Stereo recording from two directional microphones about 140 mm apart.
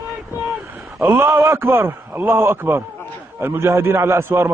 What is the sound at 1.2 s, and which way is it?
Speech, 30° right (ahead or behind).